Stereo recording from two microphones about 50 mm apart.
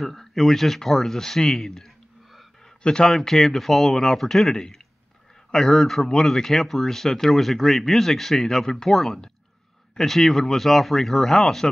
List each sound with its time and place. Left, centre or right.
0.0 s speech: centre
2.6 s a sound: centre
3.1 s speech: centre